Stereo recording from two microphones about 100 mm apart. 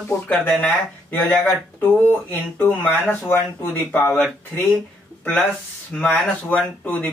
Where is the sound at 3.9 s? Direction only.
20° left (ahead or behind).